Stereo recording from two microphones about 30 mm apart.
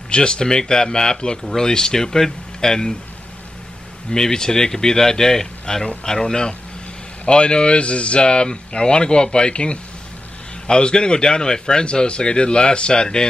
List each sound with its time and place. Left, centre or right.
0.1 s a man's voice: left
4.1 s a man's voice: left